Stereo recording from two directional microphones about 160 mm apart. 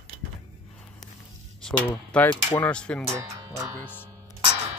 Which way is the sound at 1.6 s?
5° left (ahead or behind).